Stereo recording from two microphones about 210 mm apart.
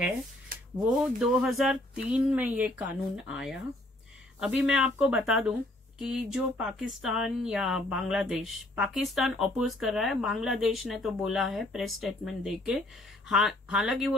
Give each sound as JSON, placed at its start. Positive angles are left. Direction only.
{"t": 0.7, "sound": "speech", "side_deg": 0}